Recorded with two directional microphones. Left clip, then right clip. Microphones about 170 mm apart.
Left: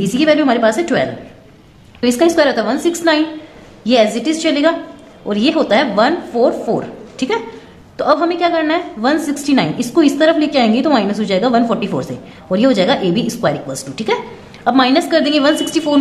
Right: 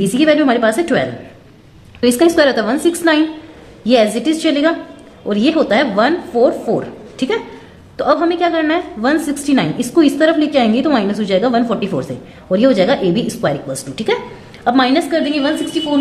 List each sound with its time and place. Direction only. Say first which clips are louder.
0.0 s a woman's voice: even; 10° right (ahead or behind)
15.0 s a woman's voice: left 3 dB; 15° left (ahead or behind)